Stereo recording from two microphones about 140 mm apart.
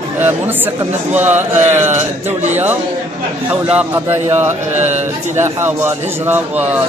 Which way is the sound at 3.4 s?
10° right (ahead or behind).